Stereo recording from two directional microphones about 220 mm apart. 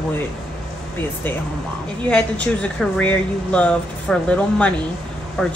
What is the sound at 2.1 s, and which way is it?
Speech, 5° left (ahead or behind).